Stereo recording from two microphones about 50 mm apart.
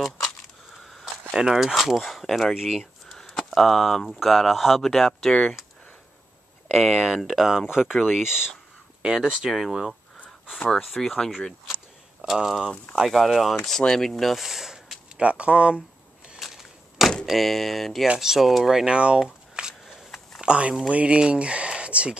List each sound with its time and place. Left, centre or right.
1.3 s speech: centre
1.8 s speech: centre
2.5 s speech: centre
3.1 s speech: centre
6.7 s speech: centre
7.7 s speech: centre
12.3 s speech: centre
15.1 s speech: right
16.3 s a sound: centre
17.3 s speech: centre
18.9 s speech: centre